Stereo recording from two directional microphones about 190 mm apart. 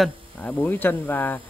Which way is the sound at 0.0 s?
5° left (ahead or behind).